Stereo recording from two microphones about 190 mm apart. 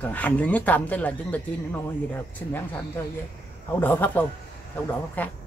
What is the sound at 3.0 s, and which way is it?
Speech, 10° left (ahead or behind).